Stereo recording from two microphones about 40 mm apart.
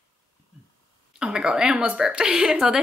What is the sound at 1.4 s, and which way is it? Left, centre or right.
A woman's voice, centre.